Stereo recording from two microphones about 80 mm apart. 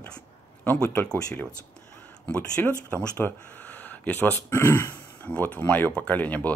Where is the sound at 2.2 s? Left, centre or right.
Centre.